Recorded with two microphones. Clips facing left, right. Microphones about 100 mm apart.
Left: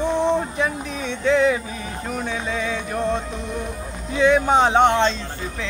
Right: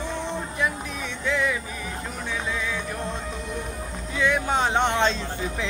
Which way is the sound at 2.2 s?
25° left (ahead or behind).